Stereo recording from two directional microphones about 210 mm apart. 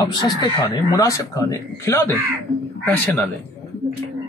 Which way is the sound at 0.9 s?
15° left (ahead or behind).